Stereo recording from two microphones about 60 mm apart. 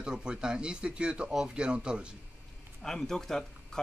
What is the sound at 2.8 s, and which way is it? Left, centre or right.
Speech, centre.